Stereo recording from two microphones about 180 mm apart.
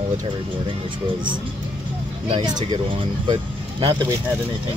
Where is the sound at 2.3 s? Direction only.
25° right (ahead or behind).